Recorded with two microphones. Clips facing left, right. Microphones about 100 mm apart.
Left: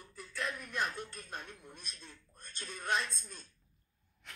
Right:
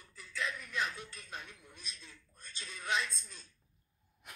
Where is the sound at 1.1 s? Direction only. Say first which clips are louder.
Left 2 dB; 45° left (ahead or behind).